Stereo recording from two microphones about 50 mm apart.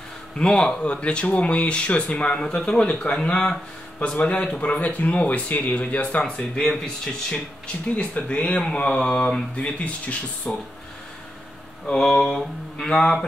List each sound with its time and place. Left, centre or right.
0.4 s speech: centre
7.2 s speech: left
8.1 s speech: left
11.9 s speech: centre